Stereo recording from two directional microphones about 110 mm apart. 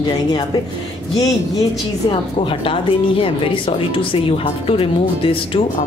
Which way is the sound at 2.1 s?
55° left (ahead or behind).